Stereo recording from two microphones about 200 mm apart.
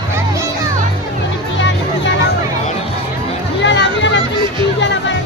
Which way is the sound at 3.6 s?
65° left (ahead or behind).